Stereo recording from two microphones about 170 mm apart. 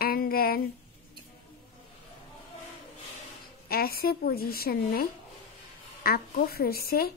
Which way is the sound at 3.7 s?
65° left (ahead or behind).